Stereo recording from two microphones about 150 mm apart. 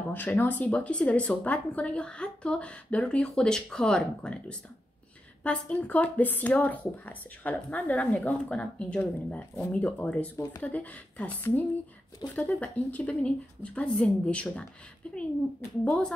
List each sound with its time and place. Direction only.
0.1 s speech: 10° left (ahead or behind)